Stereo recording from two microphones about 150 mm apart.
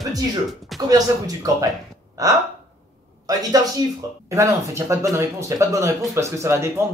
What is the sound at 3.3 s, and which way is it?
Speech, 25° right (ahead or behind).